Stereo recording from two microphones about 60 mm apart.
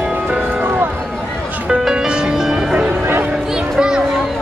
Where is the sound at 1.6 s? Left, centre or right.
Centre.